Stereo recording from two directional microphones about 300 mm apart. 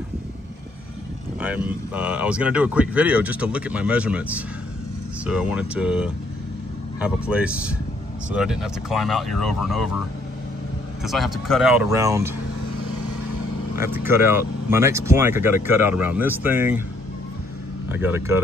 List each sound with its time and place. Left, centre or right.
1.4 s speech: centre
11.1 s speech: centre
13.7 s speech: centre
17.9 s speech: centre